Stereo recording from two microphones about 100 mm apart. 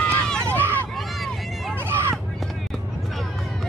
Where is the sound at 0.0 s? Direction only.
10° left (ahead or behind).